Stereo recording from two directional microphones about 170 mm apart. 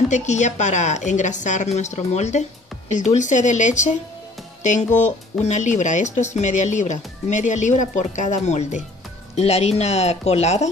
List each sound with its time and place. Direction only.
0.1 s speech: 45° left (ahead or behind)